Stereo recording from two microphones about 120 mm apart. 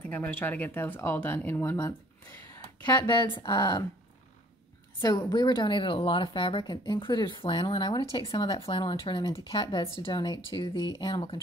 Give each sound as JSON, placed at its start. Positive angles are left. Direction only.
{"t": 0.0, "sound": "speech", "side_deg": 15}
{"t": 3.4, "sound": "speech", "side_deg": 30}
{"t": 5.0, "sound": "speech", "side_deg": 35}